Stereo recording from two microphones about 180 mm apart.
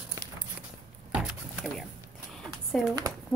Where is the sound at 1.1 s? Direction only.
5° right (ahead or behind).